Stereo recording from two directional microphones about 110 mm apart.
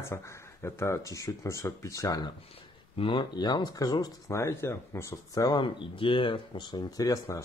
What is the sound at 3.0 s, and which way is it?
Speech, 50° left (ahead or behind).